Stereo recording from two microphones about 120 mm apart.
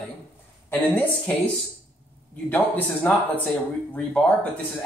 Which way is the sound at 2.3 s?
15° left (ahead or behind).